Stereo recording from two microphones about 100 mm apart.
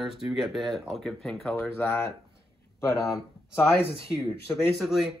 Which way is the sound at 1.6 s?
20° left (ahead or behind).